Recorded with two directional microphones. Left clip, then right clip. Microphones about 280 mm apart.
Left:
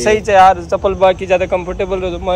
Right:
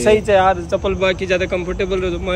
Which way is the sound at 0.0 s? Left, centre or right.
Left.